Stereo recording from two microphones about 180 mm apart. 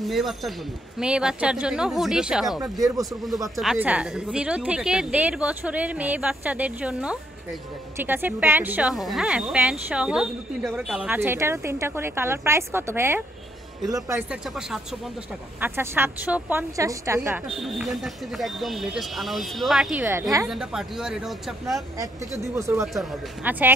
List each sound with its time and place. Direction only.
0.0 s speech: centre (ahead or behind); by 14.2 s 20° right (ahead or behind)
14.3 s speech: centre (ahead or behind)
15.6 s speech: 15° right (ahead or behind)
17.5 s speech: centre (ahead or behind)
20.1 s speech: 15° right (ahead or behind)
20.4 s speech: centre (ahead or behind)
21.7 s speech: 20° right (ahead or behind)